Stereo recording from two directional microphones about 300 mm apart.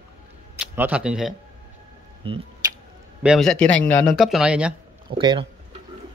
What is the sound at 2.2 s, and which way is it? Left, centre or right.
Speech, centre.